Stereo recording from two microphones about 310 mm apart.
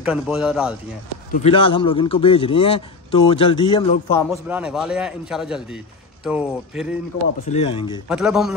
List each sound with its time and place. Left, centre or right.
0.0 s a man's voice: centre
1.3 s a man's voice: centre
4.3 s a man's voice: centre
7.5 s a man's voice: centre
8.1 s a man's voice: centre